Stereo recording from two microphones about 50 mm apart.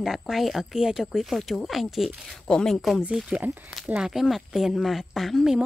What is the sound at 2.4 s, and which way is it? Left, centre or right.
Speech, centre.